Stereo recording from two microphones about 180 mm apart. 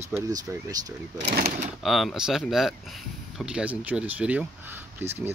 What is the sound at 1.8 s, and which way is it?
Speech, centre (ahead or behind).